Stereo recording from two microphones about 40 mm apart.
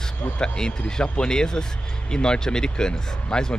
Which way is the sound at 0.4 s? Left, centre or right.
Centre.